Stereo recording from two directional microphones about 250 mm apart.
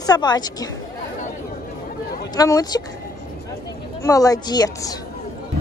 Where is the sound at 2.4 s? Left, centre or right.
Centre.